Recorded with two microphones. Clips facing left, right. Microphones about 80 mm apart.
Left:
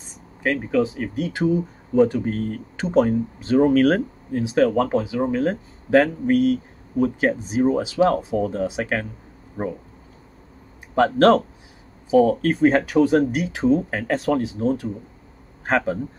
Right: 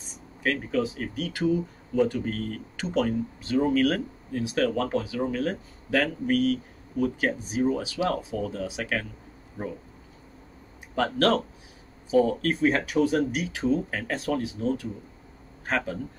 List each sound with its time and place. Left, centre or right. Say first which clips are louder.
0.4 s speech: left 6 dB; left
1.1 s speech: left 4 dB; left
9.6 s speech: left 7 dB; left
11.1 s speech: left 8 dB; left